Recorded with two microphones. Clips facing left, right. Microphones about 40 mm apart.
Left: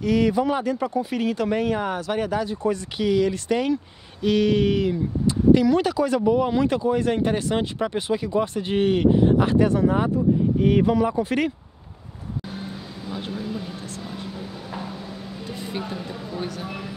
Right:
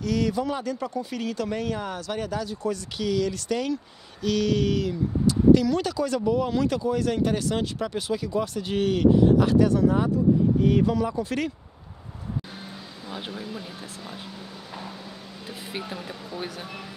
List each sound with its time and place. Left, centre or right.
0.0 s speech: left
12.5 s vehicle: centre
13.2 s speech: centre
14.7 s a sound: centre
15.4 s music: centre
15.9 s speech: centre
16.3 s speech: centre